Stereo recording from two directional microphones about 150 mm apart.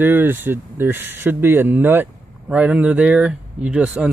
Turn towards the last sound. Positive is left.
turn(degrees=-10)  # may be behind; listen again after turning